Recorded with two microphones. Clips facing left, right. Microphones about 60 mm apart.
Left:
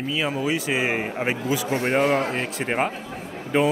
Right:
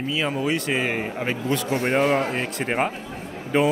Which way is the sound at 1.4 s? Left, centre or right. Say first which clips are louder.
Right 3 dB; centre.